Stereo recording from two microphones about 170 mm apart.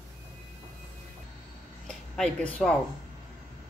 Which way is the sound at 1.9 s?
5° left (ahead or behind).